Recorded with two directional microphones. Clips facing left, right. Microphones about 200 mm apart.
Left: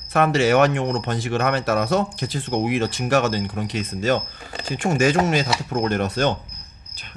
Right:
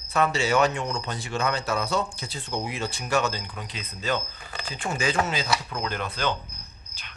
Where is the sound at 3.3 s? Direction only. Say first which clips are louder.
Left 11 dB; 50° left (ahead or behind).